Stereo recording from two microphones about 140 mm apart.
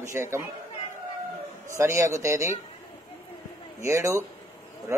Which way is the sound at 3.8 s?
20° right (ahead or behind).